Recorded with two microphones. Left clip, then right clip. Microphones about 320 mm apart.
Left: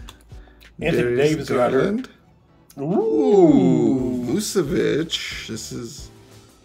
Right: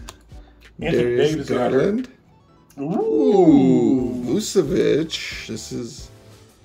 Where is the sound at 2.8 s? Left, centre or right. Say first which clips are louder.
Left 1 dB; left.